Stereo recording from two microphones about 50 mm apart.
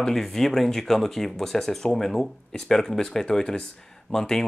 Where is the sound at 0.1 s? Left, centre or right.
Centre.